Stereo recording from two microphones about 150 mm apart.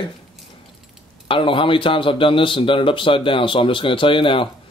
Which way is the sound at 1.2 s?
35° left (ahead or behind).